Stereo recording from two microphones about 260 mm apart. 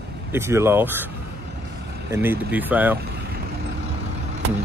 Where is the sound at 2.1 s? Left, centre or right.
Centre.